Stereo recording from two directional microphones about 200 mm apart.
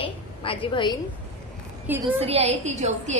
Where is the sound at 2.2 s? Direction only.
30° right (ahead or behind).